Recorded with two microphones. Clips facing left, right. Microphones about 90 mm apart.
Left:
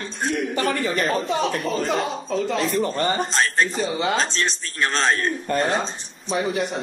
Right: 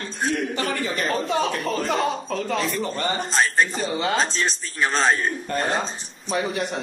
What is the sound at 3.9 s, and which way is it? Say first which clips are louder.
Speech: left 1 dB; 20° left (ahead or behind).